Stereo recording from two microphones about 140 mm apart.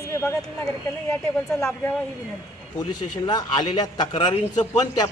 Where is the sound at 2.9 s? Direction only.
30° left (ahead or behind).